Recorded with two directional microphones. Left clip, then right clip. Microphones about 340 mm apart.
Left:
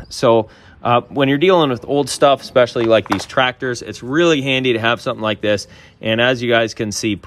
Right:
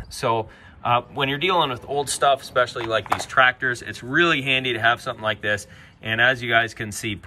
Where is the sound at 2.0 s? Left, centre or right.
Centre.